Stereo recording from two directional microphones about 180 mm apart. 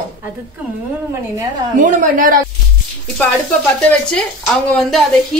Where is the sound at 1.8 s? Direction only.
45° right (ahead or behind).